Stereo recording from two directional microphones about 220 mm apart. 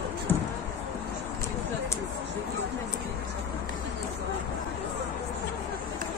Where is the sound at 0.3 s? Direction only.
10° left (ahead or behind).